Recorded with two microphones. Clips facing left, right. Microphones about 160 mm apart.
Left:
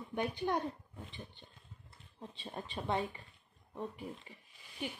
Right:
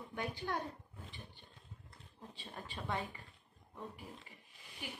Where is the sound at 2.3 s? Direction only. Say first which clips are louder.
Left 5 dB; 20° left (ahead or behind).